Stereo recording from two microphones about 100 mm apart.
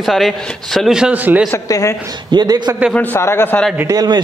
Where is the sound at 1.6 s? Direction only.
35° left (ahead or behind).